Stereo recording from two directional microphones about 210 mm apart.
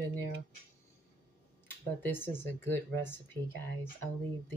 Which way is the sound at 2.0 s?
10° left (ahead or behind).